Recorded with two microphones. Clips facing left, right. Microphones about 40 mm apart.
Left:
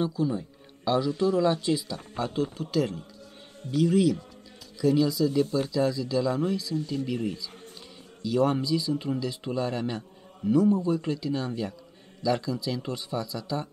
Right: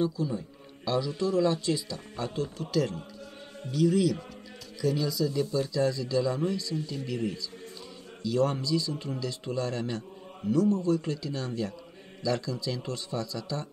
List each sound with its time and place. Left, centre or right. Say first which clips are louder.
0.1 s a man's voice: left 4 dB; left; by 7.0 s centre
8.2 s speech: left 3 dB; centre